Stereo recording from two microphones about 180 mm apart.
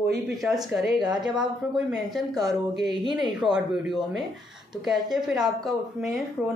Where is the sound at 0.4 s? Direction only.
Centre (ahead or behind).